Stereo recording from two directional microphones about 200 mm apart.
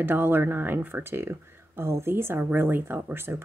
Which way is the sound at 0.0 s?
10° right (ahead or behind).